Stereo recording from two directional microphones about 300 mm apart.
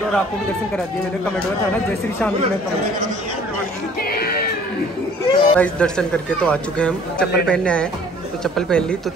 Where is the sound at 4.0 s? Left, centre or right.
Left.